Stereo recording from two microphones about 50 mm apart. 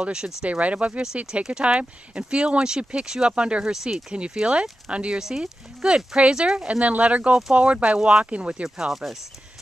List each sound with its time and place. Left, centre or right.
0.0 s speech: centre
0.4 s speech: right
3.7 s speech: centre; by 8.6 s right
8.6 s speech: centre